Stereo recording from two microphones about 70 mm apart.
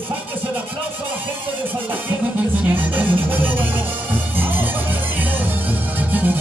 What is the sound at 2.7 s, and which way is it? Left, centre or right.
Music, right.